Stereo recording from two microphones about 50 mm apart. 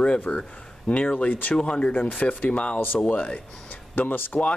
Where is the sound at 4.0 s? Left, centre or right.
Left.